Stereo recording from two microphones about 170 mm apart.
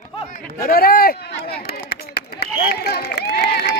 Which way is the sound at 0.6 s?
60° left (ahead or behind).